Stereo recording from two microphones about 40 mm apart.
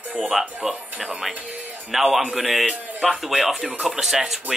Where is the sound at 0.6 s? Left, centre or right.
Centre.